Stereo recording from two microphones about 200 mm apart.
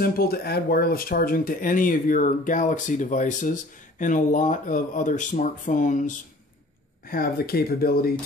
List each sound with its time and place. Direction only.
0.0 s speech: 50° left (ahead or behind)